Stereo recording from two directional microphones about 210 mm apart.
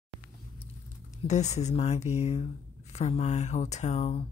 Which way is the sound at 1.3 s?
35° left (ahead or behind).